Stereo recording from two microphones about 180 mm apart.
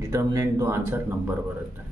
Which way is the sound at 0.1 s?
20° right (ahead or behind).